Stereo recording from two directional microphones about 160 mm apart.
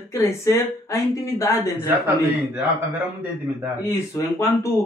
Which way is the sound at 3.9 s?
20° left (ahead or behind).